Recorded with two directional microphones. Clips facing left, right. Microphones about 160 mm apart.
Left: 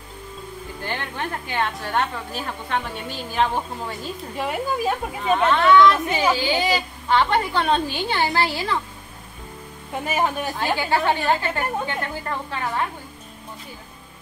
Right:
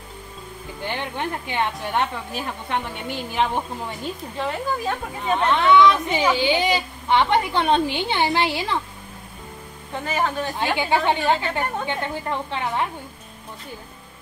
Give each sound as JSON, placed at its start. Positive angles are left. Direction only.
{"t": 0.8, "sound": "a woman's voice", "side_deg": -15}
{"t": 4.4, "sound": "speech", "side_deg": 10}
{"t": 5.4, "sound": "a woman's voice", "side_deg": -15}
{"t": 10.0, "sound": "speech", "side_deg": 15}
{"t": 10.6, "sound": "a woman's voice", "side_deg": -20}